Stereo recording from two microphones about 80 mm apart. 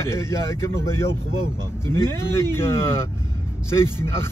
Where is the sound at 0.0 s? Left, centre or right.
Left.